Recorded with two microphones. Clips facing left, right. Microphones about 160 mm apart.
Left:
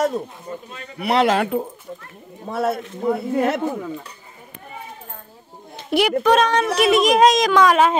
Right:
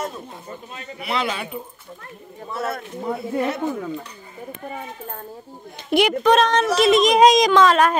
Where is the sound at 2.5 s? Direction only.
75° left (ahead or behind).